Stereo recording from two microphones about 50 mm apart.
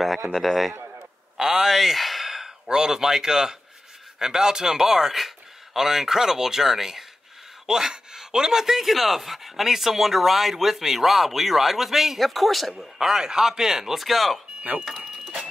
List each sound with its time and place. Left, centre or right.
0.0 s a man's voice: centre
12.7 s a man's voice: centre
14.6 s speech: right